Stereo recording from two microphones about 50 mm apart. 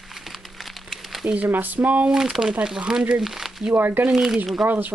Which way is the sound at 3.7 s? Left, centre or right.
Right.